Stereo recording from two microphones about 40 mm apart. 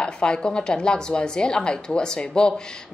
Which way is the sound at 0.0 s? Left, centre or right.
Left.